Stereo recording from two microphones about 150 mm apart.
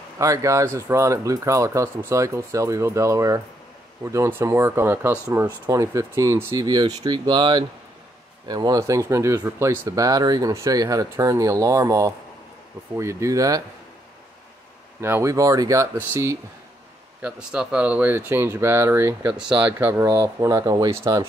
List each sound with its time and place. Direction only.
0.2 s speech: 20° right (ahead or behind)
15.0 s speech: 15° right (ahead or behind)
17.2 s speech: 5° right (ahead or behind); by 21.3 s 25° right (ahead or behind)